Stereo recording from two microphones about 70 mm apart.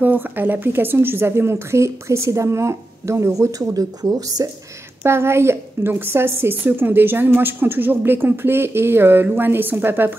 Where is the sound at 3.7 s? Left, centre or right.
Right.